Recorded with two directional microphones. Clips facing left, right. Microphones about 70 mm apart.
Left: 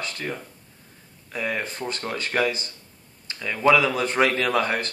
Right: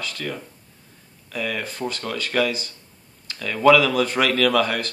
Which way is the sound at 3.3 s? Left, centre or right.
Centre.